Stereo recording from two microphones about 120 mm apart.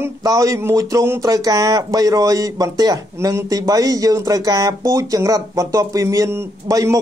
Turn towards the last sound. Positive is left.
turn(degrees=-25)  # may be behind; listen again after turning